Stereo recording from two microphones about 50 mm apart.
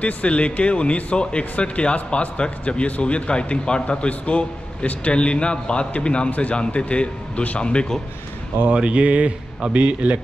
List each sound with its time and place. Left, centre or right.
0.0 s speech: left
8.6 s speech: right